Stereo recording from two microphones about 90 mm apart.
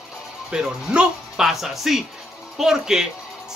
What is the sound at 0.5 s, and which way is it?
Speech, 10° right (ahead or behind).